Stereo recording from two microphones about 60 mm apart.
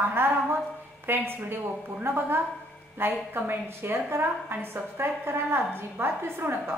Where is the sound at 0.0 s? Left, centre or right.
Right.